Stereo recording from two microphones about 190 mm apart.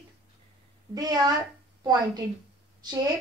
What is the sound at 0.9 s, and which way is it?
Speech, 20° right (ahead or behind).